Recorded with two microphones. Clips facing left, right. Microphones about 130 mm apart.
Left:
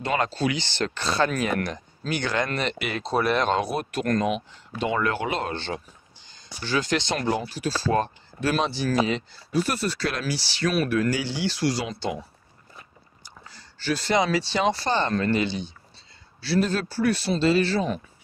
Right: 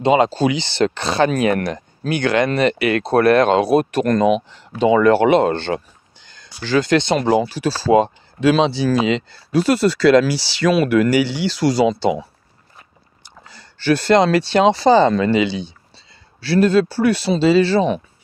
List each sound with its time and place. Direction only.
0.0 s speech: 90° right
13.2 s speech: 70° right (ahead or behind); by 15.7 s 90° right
16.3 s speech: 65° right (ahead or behind)